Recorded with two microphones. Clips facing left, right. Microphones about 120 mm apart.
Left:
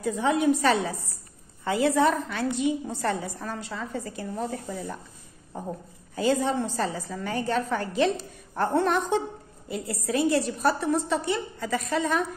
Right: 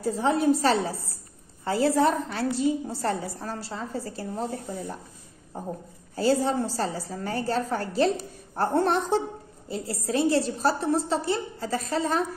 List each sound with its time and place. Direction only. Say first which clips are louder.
0.0 s a woman's voice: even; 35° right (ahead or behind)
6.1 s a woman's voice: right 1 dB; 35° right (ahead or behind)